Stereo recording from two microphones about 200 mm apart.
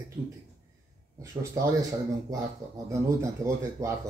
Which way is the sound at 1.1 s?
15° right (ahead or behind).